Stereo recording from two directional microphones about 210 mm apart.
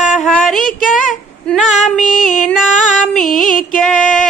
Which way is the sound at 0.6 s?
40° left (ahead or behind).